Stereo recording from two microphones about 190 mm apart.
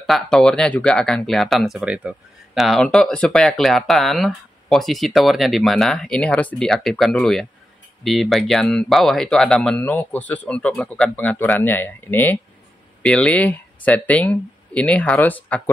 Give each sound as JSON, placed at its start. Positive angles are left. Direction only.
{"t": 0.0, "sound": "speech", "side_deg": 0}